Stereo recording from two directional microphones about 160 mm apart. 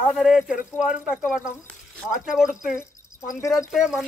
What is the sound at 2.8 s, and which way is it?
Speech, 15° left (ahead or behind).